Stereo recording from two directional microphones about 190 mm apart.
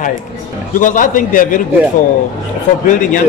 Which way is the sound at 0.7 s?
45° left (ahead or behind).